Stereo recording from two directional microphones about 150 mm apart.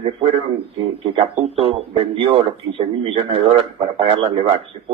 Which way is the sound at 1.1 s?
40° right (ahead or behind).